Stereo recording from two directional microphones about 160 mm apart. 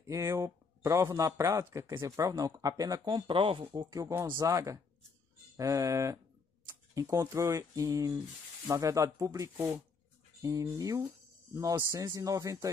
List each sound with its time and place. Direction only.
0.0 s speech: 20° right (ahead or behind)